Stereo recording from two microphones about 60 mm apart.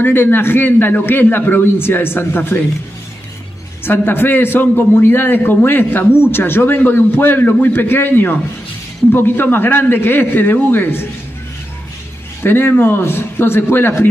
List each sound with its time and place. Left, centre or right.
0.0 s speech: left
3.8 s speech: left
12.4 s speech: left